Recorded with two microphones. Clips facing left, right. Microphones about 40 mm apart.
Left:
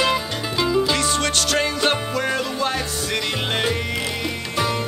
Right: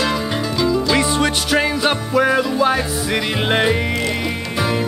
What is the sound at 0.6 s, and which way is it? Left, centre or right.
Music, centre.